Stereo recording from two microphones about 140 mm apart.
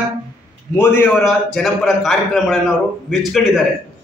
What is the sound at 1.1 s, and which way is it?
A man's voice, centre (ahead or behind).